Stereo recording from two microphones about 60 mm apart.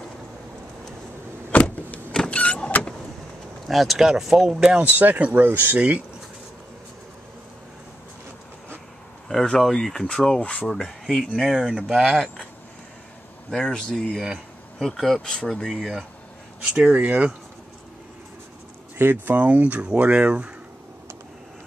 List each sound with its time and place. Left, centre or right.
1.6 s power windows: centre
3.6 s speech: centre
4.8 s speech: right
9.3 s speech: centre
10.4 s speech: centre
10.7 s speech: centre
11.5 s speech: centre
13.5 s speech: centre
16.6 s speech: right
18.9 s speech: right
19.3 s speech: right